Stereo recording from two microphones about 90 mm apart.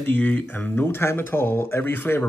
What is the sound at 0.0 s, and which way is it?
Speech, 20° left (ahead or behind).